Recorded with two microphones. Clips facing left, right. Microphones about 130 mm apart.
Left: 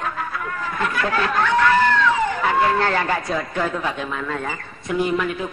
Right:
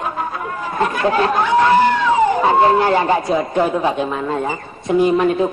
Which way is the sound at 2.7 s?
20° right (ahead or behind).